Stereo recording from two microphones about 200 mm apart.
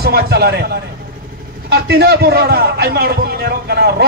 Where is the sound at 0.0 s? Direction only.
55° right (ahead or behind).